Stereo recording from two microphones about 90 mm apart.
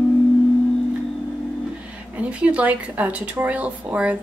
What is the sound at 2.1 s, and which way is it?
A woman's voice, 15° right (ahead or behind).